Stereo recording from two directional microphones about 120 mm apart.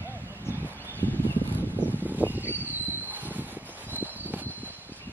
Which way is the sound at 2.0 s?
15° right (ahead or behind).